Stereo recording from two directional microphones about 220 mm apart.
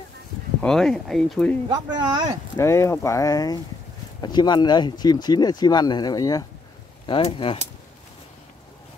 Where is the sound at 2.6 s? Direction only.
10° left (ahead or behind).